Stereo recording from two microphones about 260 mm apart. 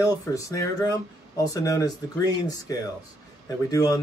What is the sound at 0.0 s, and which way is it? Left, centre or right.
Speech, centre.